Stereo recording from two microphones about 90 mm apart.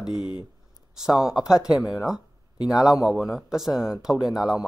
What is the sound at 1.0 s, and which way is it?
Speech, 5° right (ahead or behind).